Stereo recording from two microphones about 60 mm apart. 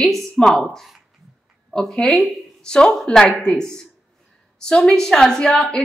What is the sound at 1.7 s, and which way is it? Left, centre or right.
A woman's voice, centre.